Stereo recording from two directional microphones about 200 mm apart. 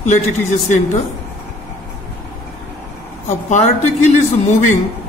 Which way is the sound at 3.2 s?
35° left (ahead or behind).